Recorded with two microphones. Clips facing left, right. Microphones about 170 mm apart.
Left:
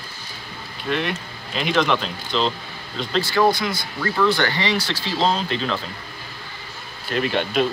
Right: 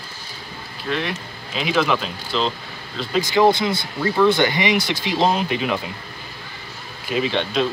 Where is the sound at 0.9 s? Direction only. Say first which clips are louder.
Left 1 dB; centre (ahead or behind).